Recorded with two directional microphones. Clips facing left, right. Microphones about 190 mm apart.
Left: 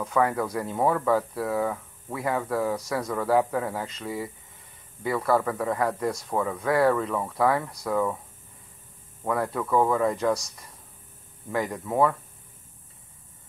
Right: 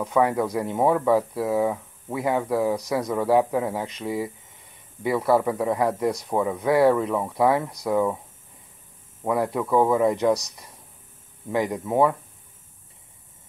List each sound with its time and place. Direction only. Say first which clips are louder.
0.0 s speech: right 3 dB; 20° right (ahead or behind)
9.2 s speech: right 3 dB; 20° right (ahead or behind)